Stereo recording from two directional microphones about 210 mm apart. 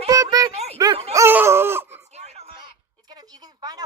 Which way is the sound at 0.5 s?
30° right (ahead or behind).